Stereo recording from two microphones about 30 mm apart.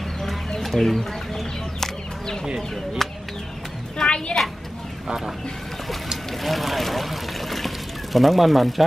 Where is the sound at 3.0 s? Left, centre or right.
Centre.